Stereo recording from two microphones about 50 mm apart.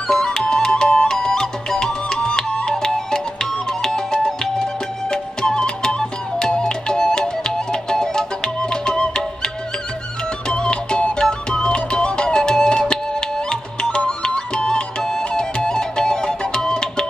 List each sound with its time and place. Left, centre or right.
0.1 s music: centre
10.5 s music: centre